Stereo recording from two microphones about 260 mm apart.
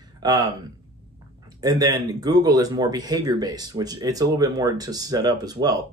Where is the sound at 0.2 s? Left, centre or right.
Centre.